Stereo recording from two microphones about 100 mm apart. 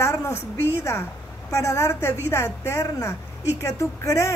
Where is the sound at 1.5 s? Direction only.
30° left (ahead or behind).